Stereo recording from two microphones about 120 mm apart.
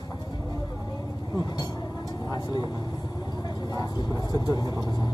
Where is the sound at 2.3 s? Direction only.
35° left (ahead or behind).